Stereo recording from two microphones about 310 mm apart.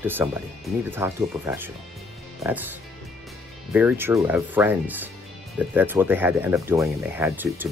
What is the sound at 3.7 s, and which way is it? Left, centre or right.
Speech, centre.